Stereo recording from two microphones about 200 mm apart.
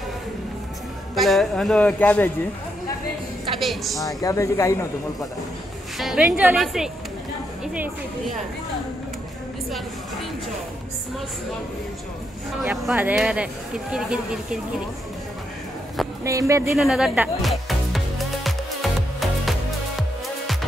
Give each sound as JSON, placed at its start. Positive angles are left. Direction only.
{"t": 1.1, "sound": "speech", "side_deg": 0}
{"t": 3.5, "sound": "a woman's voice", "side_deg": 0}
{"t": 4.0, "sound": "speech", "side_deg": 15}
{"t": 5.9, "sound": "speech", "side_deg": -5}
{"t": 12.6, "sound": "speech", "side_deg": -5}
{"t": 16.3, "sound": "speech", "side_deg": -15}
{"t": 16.7, "sound": "music", "side_deg": 0}